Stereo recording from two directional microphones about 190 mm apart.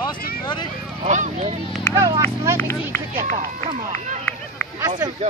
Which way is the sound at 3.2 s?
40° right (ahead or behind).